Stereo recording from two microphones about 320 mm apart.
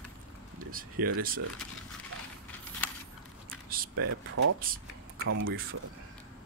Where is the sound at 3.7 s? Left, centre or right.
Right.